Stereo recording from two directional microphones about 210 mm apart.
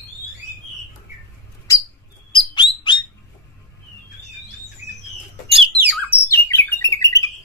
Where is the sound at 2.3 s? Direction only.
25° left (ahead or behind).